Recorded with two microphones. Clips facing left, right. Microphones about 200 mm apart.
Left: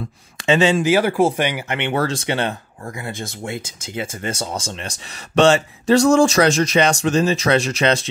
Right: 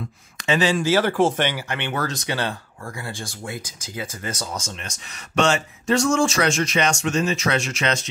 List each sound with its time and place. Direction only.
0.4 s speech: 25° left (ahead or behind)